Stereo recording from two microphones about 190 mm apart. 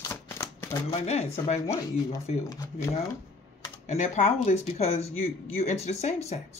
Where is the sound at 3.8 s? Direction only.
40° left (ahead or behind).